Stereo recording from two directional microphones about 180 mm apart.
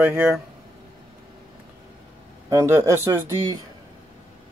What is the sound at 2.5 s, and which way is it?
Speech, 15° right (ahead or behind).